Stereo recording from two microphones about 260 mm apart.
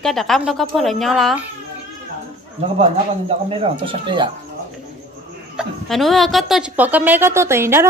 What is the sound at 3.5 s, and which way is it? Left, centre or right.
Speech, centre.